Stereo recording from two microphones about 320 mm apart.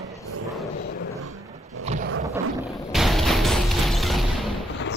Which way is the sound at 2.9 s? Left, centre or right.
Centre.